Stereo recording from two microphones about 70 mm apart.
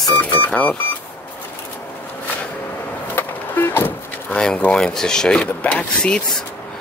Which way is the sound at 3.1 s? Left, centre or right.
Left.